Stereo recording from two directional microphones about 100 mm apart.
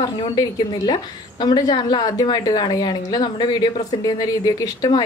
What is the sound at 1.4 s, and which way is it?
A woman's voice, 45° left (ahead or behind).